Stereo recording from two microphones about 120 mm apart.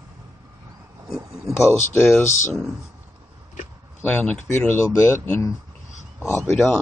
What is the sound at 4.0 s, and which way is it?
Speech, 15° left (ahead or behind).